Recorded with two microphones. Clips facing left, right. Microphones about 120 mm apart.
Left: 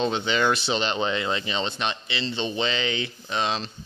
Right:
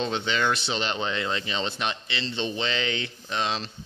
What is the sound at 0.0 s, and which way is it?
Speech, 5° left (ahead or behind).